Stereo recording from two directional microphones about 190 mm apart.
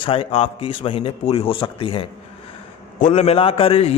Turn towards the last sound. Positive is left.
turn(degrees=30)  # may be behind; listen again after turning